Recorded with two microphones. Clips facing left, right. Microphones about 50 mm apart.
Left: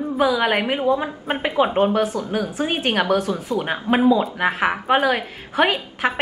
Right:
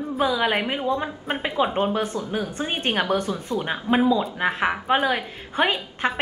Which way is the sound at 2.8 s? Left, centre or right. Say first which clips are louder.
Left 2 dB; left.